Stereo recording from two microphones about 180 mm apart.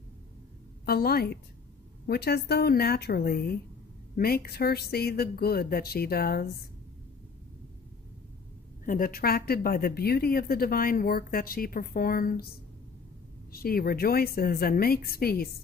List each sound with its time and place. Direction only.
0.8 s speech: 60° left (ahead or behind)
8.8 s speech: 50° left (ahead or behind)